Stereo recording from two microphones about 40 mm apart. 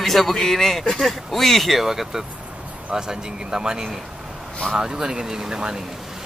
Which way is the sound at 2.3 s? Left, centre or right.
Right.